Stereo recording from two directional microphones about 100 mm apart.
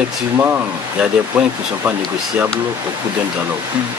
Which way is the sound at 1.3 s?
10° right (ahead or behind).